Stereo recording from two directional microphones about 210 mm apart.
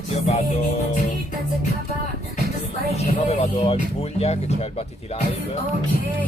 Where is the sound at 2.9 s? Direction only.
30° left (ahead or behind).